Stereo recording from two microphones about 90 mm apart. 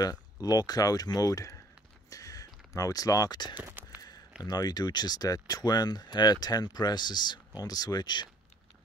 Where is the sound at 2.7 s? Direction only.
40° left (ahead or behind).